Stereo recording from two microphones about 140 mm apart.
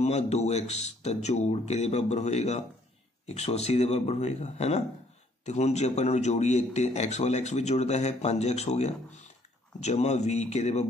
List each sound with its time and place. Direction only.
0.0 s speech: 50° left (ahead or behind)